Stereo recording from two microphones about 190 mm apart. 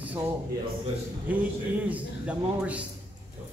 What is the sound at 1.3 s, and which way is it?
A man's voice, 5° right (ahead or behind).